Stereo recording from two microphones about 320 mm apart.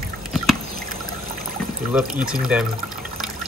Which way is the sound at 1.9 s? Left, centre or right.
Centre.